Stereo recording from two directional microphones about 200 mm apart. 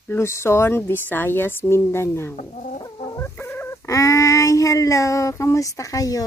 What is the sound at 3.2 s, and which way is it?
Chicken, 10° left (ahead or behind).